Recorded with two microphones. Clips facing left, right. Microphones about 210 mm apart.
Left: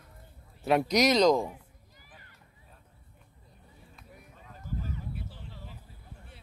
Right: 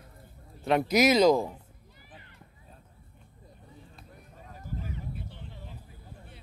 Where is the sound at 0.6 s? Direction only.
Centre (ahead or behind).